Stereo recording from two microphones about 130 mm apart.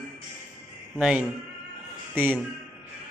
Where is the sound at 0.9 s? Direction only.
5° right (ahead or behind).